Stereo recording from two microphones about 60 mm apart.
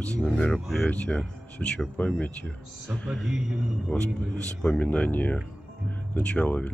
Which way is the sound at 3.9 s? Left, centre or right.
Left.